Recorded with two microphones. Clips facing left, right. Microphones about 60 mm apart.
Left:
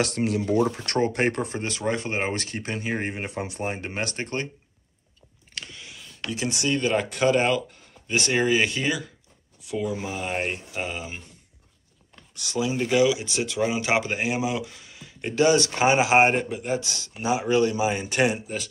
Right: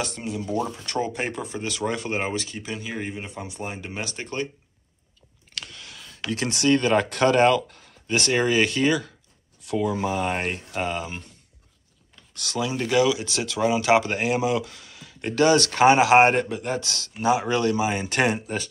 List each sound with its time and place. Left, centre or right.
0.0 s speech: left
0.8 s speech: left
1.7 s speech: left
2.3 s speech: left
2.7 s speech: left
3.3 s speech: left
3.6 s speech: left
5.5 s a sound: centre
6.5 s speech: centre
12.4 s speech: centre
18.1 s speech: centre